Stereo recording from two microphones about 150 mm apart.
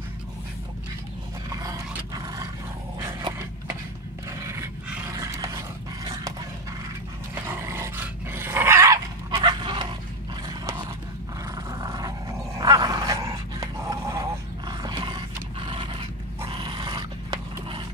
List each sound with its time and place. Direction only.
1.5 s roar: 25° right (ahead or behind)
3.0 s dog: 25° right (ahead or behind)
4.4 s a sound: 20° right (ahead or behind)
7.4 s dog: 15° right (ahead or behind)
9.3 s dog: 30° right (ahead or behind)
11.5 s dog: 25° right (ahead or behind)
14.7 s roar: 30° right (ahead or behind)
16.4 s dog: 35° right (ahead or behind)